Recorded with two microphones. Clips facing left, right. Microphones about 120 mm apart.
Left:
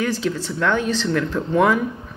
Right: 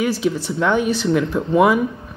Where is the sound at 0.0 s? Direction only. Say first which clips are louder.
Right 3 dB; 15° right (ahead or behind).